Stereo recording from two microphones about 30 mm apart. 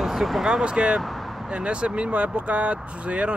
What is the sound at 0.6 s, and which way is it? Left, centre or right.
Speech, right.